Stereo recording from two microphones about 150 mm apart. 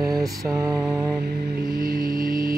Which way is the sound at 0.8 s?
5° right (ahead or behind).